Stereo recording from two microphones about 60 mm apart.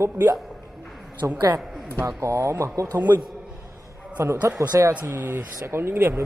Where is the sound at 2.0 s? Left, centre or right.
Right.